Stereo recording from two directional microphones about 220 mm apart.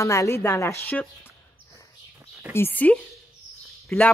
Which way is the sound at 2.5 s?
10° left (ahead or behind).